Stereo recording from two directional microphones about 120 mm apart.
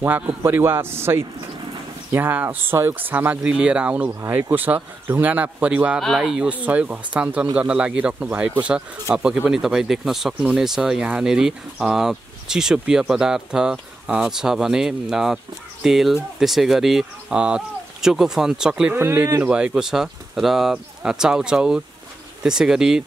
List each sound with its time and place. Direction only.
0.0 s a man's voice: 20° right (ahead or behind)
18.9 s a man's voice: 20° right (ahead or behind)
19.5 s speech: 5° right (ahead or behind)